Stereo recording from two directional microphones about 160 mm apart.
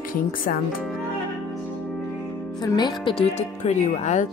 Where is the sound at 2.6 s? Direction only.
25° left (ahead or behind).